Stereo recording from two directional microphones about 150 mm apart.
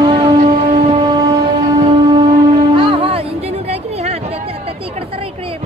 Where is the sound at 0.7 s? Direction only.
35° right (ahead or behind).